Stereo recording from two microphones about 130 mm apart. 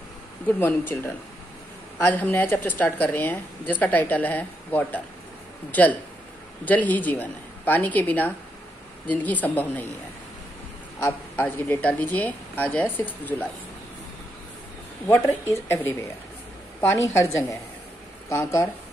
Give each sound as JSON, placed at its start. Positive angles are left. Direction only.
{"t": 0.5, "sound": "speech", "side_deg": 15}
{"t": 11.1, "sound": "speech", "side_deg": 15}
{"t": 15.0, "sound": "speech", "side_deg": 20}
{"t": 16.9, "sound": "speech", "side_deg": 20}